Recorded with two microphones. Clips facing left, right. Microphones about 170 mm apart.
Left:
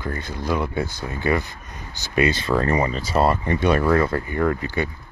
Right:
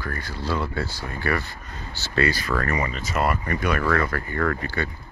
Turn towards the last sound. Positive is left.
turn(degrees=20)  # may be behind; listen again after turning